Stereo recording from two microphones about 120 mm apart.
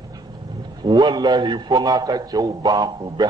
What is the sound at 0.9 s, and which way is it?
A man's voice, 40° right (ahead or behind).